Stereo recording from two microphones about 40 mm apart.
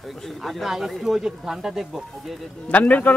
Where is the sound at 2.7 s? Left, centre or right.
Left.